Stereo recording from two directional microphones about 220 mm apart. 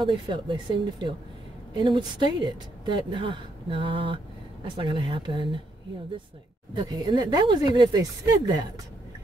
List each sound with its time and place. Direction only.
0.0 s speech: 20° right (ahead or behind)
6.7 s speech: 20° right (ahead or behind)